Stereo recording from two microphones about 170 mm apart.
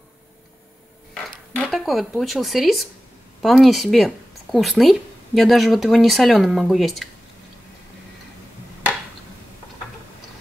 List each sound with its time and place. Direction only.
1.5 s speech: 5° left (ahead or behind)